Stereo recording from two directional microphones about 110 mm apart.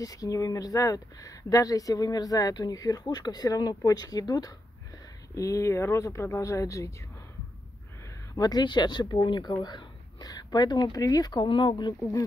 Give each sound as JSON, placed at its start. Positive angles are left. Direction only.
{"t": 0.0, "sound": "speech", "side_deg": 30}
{"t": 8.4, "sound": "speech", "side_deg": 35}
{"t": 12.0, "sound": "speech", "side_deg": 30}